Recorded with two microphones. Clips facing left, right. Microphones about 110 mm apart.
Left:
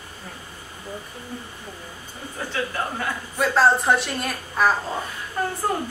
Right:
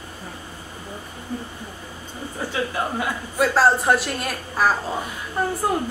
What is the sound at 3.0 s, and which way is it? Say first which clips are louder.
A woman's voice: right 3 dB; centre (ahead or behind).